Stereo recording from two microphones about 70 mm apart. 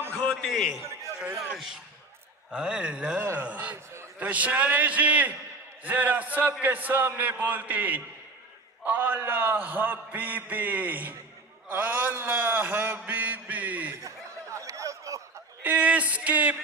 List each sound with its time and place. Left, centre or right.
0.3 s a man's voice: centre; by 13.9 s right
14.0 s snicker: right
15.6 s a man's voice: right